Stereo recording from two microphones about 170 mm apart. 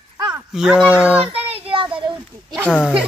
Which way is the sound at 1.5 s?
30° right (ahead or behind).